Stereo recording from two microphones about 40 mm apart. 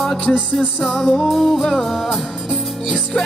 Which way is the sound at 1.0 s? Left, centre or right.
Centre.